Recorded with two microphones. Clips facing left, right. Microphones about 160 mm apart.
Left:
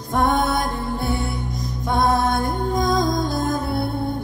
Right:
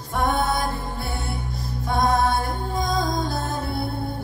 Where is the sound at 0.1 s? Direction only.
45° left (ahead or behind).